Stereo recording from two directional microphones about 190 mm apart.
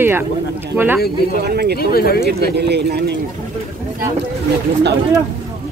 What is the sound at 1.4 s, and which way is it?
Speech, 55° right (ahead or behind).